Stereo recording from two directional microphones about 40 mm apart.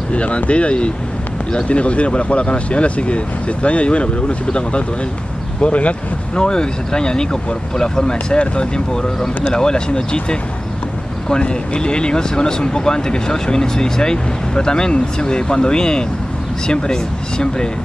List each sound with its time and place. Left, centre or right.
0.1 s speech: left
6.3 s speech: centre